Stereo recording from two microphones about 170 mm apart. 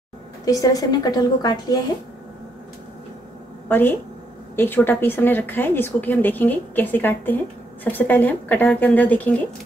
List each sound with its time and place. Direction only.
0.5 s a woman's voice: 20° left (ahead or behind)
3.6 s a woman's voice: 10° left (ahead or behind)